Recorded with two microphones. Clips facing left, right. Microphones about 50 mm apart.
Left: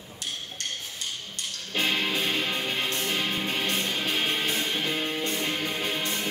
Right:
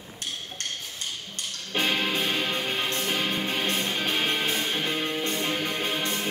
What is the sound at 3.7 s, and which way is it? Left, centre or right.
Music, right.